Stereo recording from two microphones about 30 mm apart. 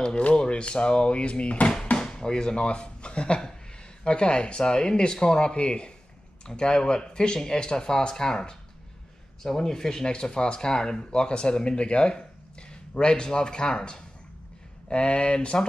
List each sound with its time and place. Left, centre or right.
0.5 s speech: left
2.0 s speech: left